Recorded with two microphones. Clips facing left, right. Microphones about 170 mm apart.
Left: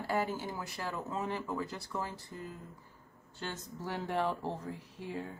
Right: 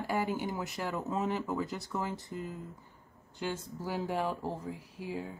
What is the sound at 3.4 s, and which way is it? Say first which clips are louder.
Speech: right 5 dB; 10° right (ahead or behind).